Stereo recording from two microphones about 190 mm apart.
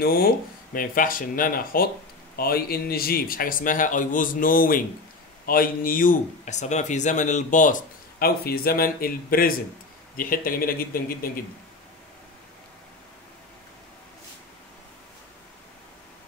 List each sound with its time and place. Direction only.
0.0 s speech: 50° left (ahead or behind)
8.2 s speech: 50° left (ahead or behind)